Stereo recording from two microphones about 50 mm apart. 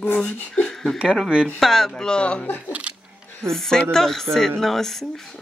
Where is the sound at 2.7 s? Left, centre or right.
Right.